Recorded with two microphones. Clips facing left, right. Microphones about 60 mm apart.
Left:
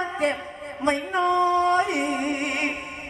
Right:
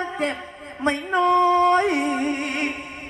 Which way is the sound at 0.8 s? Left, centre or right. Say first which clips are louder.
Right 3 dB; right.